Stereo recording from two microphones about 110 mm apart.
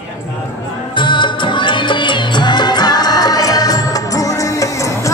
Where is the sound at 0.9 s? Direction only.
45° left (ahead or behind); by 5.1 s 30° left (ahead or behind).